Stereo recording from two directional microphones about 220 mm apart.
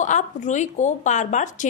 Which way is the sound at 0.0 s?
35° left (ahead or behind).